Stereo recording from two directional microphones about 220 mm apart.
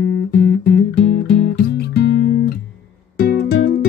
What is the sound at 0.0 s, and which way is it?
Music, 45° left (ahead or behind).